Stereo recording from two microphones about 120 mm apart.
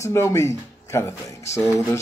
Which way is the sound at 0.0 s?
25° left (ahead or behind).